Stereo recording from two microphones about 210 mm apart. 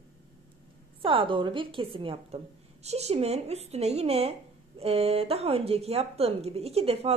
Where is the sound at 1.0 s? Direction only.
25° right (ahead or behind).